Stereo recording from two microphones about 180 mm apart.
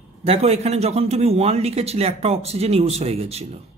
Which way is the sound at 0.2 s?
35° right (ahead or behind).